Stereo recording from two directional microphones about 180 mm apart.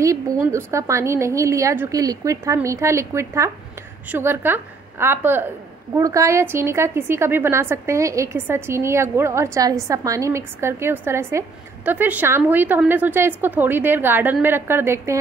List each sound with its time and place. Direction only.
0.4 s a woman's voice: 15° right (ahead or behind)